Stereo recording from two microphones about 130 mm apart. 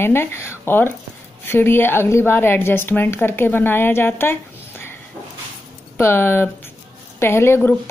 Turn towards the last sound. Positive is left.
turn(degrees=20)  # may be behind; listen again after turning